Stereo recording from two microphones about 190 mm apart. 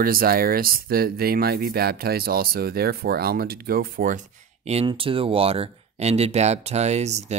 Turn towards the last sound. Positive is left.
turn(degrees=-35)  # may be behind; listen again after turning